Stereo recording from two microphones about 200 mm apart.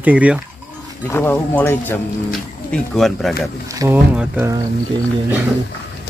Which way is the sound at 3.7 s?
15° right (ahead or behind).